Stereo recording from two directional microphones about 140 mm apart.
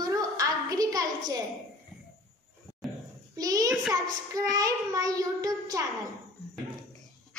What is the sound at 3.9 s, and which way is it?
Child singing, 25° right (ahead or behind).